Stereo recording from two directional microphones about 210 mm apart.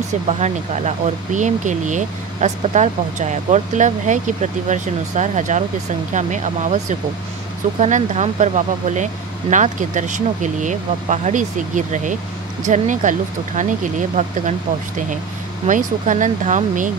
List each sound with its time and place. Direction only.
0.3 s speech: 30° right (ahead or behind)
15.6 s speech: 35° right (ahead or behind)